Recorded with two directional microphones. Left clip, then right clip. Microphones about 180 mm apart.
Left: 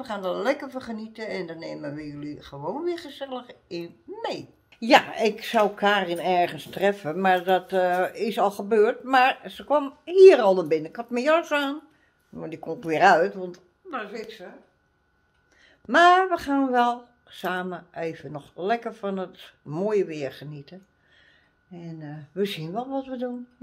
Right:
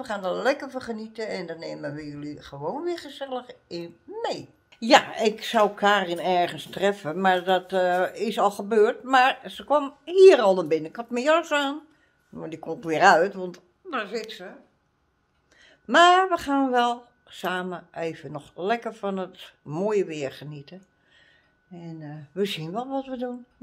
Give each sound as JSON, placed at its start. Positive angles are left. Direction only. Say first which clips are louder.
{"t": 0.0, "sound": "a woman's voice", "louder": "right 1 dB", "side_deg": -15}
{"t": 4.7, "sound": "speech", "louder": "even", "side_deg": -5}
{"t": 13.5, "sound": "speech", "louder": "right 2 dB", "side_deg": -80}
{"t": 15.9, "sound": "speech", "louder": "even", "side_deg": -20}
{"t": 21.7, "sound": "speech", "louder": "even", "side_deg": -5}